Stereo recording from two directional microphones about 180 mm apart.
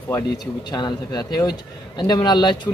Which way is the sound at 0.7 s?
25° left (ahead or behind).